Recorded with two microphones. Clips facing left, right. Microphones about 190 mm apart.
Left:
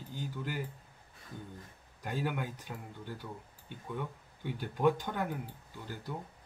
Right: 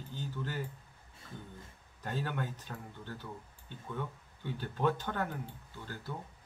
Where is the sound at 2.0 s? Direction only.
10° left (ahead or behind).